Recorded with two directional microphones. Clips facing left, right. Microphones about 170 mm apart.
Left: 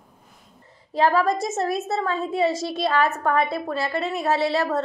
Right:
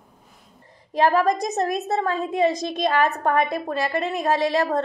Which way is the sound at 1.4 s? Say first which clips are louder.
Right 1 dB; 15° right (ahead or behind).